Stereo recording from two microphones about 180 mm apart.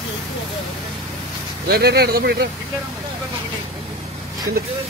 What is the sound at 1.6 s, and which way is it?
Speech, 65° right (ahead or behind).